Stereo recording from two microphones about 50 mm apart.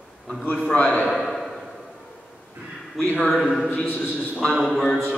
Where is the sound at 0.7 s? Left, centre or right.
Left.